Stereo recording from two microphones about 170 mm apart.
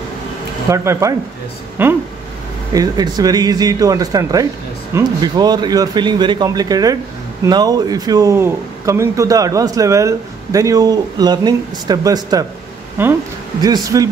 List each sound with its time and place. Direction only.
0.7 s speech: 15° right (ahead or behind)